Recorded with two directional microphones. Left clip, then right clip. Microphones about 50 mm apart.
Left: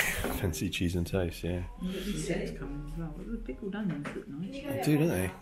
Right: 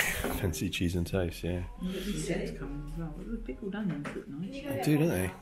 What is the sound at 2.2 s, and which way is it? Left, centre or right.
Speech, right.